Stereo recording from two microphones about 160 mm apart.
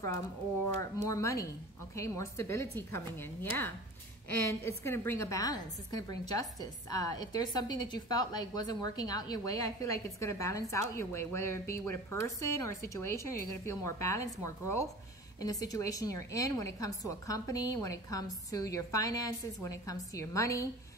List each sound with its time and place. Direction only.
1.0 s a woman's voice: 20° left (ahead or behind)